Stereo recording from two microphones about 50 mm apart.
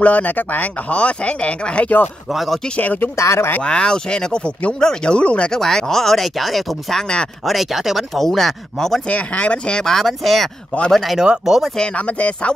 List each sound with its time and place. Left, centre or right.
0.0 s speech: left
2.3 s speech: centre
3.2 s speech: left
3.6 s speech: centre
5.5 s speech: centre
7.0 s speech: centre
7.4 s speech: centre
9.1 s speech: left; by 11.1 s centre
11.1 s speech: centre
12.1 s speech: left